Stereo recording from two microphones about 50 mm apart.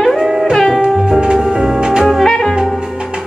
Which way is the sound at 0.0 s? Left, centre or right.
Centre.